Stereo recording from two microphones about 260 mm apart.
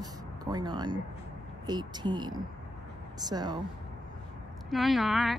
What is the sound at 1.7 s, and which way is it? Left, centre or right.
Speech, centre.